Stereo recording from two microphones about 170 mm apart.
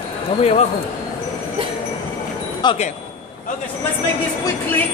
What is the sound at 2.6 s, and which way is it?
Speech, 25° left (ahead or behind).